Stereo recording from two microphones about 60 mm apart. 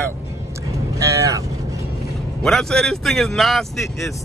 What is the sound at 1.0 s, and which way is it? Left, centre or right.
Vehicle, right.